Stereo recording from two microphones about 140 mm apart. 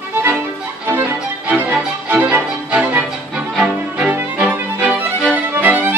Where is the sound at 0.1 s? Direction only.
15° right (ahead or behind).